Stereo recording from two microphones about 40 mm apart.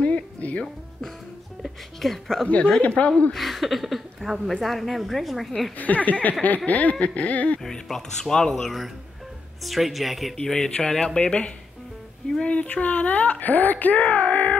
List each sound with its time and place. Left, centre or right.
0.0 s music: left
1.6 s a woman's voice: centre
2.4 s speech: left
3.3 s a woman's voice: centre
5.8 s speech: left
7.7 s speech: centre
9.6 s a woman's voice: centre
10.4 s speech: centre
11.1 s speech: left
14.0 s speech: left